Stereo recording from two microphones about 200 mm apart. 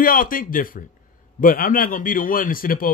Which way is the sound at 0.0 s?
45° left (ahead or behind).